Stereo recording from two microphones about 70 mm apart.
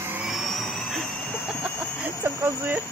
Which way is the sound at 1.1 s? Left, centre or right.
Left.